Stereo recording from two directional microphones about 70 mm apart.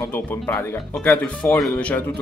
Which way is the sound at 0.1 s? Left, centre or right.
Left.